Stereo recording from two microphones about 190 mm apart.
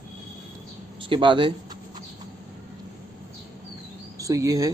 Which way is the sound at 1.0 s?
25° right (ahead or behind).